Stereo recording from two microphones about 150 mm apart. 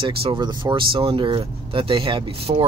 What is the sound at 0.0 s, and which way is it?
Speech, 35° right (ahead or behind).